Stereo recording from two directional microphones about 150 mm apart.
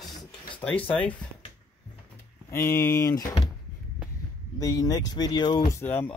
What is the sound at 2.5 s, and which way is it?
Speech, 15° left (ahead or behind).